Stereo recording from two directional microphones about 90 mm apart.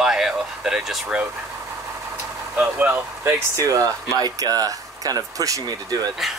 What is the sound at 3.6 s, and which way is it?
Speech, 40° right (ahead or behind).